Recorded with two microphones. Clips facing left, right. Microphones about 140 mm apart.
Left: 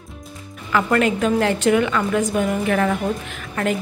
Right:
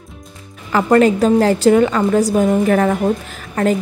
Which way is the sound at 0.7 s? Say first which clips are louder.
Right 6 dB; 35° right (ahead or behind).